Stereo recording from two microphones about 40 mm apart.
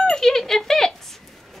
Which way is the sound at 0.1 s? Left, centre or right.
Centre.